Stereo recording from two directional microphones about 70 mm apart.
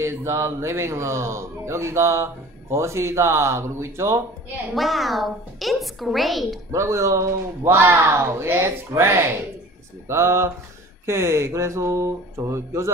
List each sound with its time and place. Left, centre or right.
0.0 s speech: right
4.7 s a woman's voice: centre
6.7 s speech: right